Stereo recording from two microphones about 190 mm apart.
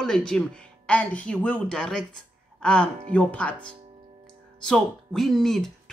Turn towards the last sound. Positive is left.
turn(degrees=0)  # may be behind; listen again after turning